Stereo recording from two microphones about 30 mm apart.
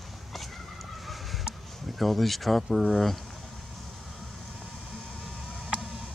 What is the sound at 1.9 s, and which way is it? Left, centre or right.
Speech, centre.